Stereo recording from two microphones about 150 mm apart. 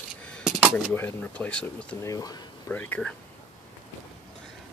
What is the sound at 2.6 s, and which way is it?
Speech, 10° left (ahead or behind).